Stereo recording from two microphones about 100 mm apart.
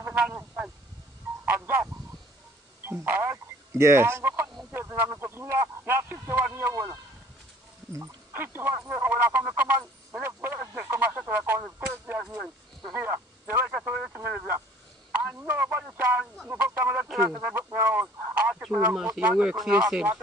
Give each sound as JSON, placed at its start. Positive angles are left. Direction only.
{"t": 1.4, "sound": "a sound", "side_deg": -15}
{"t": 2.8, "sound": "speech", "side_deg": -20}
{"t": 8.3, "sound": "speech", "side_deg": -20}